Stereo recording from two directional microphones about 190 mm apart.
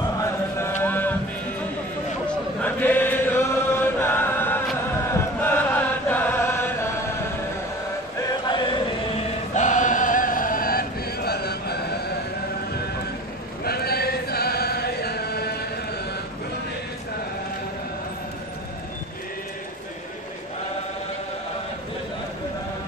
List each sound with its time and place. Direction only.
0.2 s a sound: 10° left (ahead or behind)
2.2 s chant: 10° left (ahead or behind)
4.0 s music: 10° left (ahead or behind)
5.1 s chant: 10° left (ahead or behind)
8.2 s music: 20° left (ahead or behind)
9.5 s chant: 40° left (ahead or behind); by 12.0 s 60° left (ahead or behind)
13.7 s chant: 55° left (ahead or behind)